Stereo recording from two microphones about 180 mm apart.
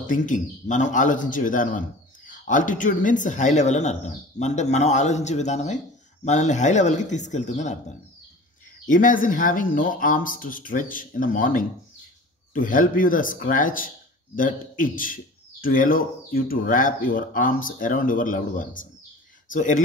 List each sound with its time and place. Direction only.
0.0 s a man's voice: 45° left (ahead or behind)
8.8 s a man's voice: 50° left (ahead or behind)